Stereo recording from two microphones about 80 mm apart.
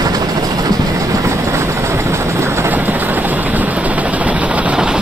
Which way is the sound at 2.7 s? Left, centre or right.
Right.